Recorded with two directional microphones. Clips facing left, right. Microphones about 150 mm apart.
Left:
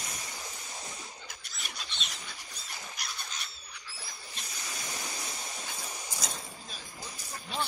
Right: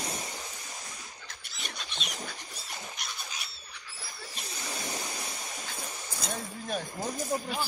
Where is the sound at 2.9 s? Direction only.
Centre (ahead or behind).